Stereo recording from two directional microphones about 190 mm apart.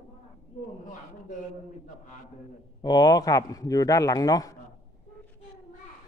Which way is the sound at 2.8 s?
20° left (ahead or behind).